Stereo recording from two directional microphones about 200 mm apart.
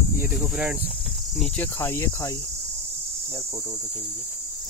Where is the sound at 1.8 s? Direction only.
10° left (ahead or behind).